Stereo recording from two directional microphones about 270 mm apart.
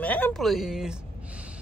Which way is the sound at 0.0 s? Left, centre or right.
Centre.